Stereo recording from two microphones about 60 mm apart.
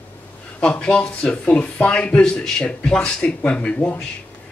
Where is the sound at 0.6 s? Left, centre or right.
Centre.